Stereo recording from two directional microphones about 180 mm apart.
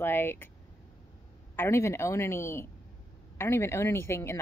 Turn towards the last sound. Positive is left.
turn(degrees=15)  # may be behind; listen again after turning